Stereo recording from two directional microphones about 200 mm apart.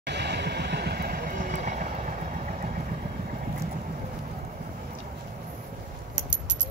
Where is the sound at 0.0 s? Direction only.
60° right (ahead or behind); by 2.7 s 40° right (ahead or behind).